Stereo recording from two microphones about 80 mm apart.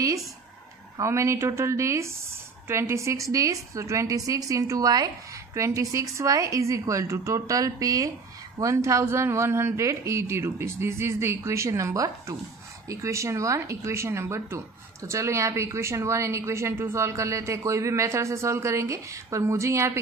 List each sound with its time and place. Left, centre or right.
1.0 s a woman's voice: right
5.5 s a woman's voice: right